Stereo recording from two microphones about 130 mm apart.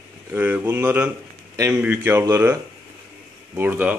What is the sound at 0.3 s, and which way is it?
Speech, 15° right (ahead or behind).